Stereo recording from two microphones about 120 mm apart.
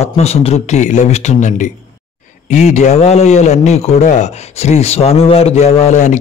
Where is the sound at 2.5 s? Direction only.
75° left (ahead or behind).